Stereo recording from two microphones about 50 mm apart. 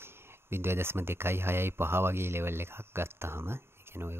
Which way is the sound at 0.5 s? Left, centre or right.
Right.